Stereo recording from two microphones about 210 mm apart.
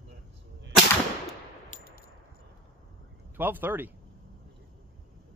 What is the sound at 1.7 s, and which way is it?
Clang, 45° left (ahead or behind).